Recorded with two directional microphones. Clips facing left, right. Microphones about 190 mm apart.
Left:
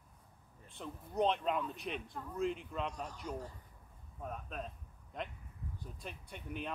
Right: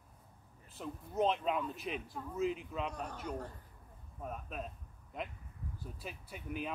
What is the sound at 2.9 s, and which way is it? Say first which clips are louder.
Speech: right 2 dB; 60° right (ahead or behind).